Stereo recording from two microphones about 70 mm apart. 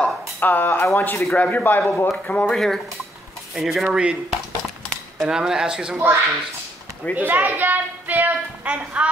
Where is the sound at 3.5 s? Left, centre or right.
Centre.